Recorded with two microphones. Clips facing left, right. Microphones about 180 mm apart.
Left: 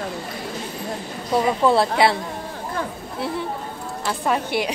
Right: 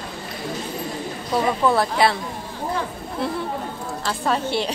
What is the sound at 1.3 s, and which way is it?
Speech, 25° left (ahead or behind).